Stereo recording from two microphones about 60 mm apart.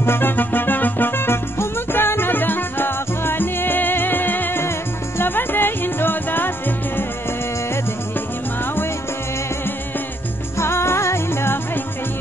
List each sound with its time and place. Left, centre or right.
0.0 s music: left
10.6 s music: left